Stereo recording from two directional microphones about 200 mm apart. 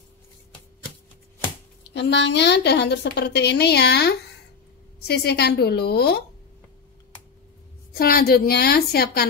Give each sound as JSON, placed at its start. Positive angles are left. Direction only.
{"t": 2.0, "sound": "a woman's voice", "side_deg": 60}
{"t": 7.9, "sound": "a woman's voice", "side_deg": 50}